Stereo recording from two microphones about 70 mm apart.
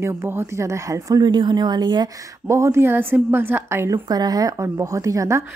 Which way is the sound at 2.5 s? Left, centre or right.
Right.